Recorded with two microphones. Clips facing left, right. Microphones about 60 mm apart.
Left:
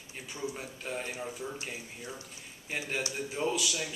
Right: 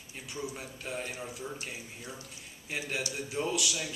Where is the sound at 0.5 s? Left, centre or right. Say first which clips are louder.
Left 1 dB; centre.